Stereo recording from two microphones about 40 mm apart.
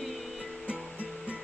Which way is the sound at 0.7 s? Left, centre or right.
Right.